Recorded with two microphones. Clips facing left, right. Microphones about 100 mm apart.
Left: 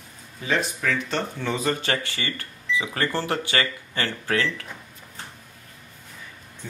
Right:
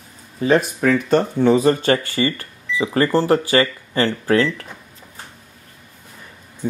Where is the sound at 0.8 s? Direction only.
45° right (ahead or behind).